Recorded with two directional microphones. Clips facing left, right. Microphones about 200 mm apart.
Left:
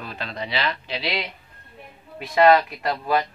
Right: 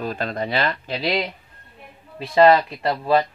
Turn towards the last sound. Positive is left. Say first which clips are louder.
# right 4 dB
turn(degrees=-30)  # may be behind; listen again after turning